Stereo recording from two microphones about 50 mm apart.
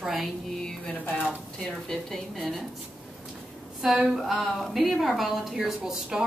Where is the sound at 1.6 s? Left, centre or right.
Centre.